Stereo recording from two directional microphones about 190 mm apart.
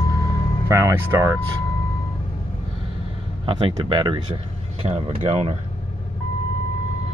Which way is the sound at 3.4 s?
25° right (ahead or behind).